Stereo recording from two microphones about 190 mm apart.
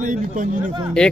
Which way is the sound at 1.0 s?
5° left (ahead or behind).